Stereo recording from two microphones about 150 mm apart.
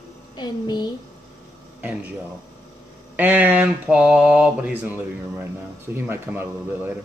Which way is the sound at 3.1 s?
10° right (ahead or behind).